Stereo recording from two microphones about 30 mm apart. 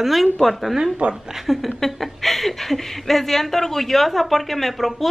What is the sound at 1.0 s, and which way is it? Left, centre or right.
Speech, right.